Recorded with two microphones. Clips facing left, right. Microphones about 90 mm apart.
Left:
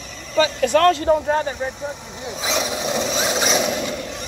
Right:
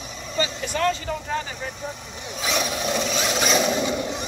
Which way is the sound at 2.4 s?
25° left (ahead or behind).